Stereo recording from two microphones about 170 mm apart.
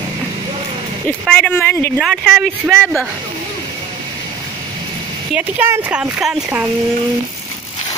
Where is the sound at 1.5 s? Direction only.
15° left (ahead or behind).